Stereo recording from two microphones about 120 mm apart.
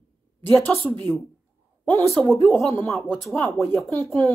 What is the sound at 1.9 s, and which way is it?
Speech, 20° left (ahead or behind).